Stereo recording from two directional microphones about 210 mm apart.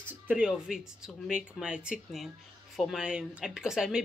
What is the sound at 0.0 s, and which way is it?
Speech, 5° right (ahead or behind).